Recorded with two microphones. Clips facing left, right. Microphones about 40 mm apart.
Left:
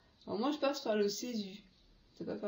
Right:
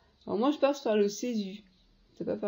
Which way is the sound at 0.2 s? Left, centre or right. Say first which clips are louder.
Right 7 dB; right.